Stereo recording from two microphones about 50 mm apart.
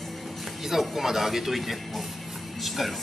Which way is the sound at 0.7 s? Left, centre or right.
Centre.